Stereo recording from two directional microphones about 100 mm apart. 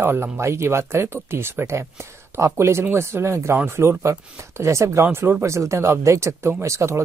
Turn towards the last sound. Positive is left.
turn(degrees=-30)  # may be behind; listen again after turning